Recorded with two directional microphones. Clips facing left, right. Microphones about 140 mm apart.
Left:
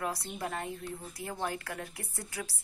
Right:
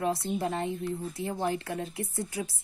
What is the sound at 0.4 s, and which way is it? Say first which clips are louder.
A woman's voice: right 6 dB; 25° right (ahead or behind).